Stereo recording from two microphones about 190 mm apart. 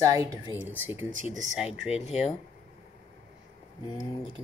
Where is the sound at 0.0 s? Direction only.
15° right (ahead or behind); by 1.7 s centre (ahead or behind).